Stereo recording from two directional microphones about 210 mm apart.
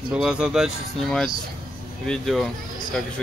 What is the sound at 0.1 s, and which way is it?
Speech, 5° right (ahead or behind).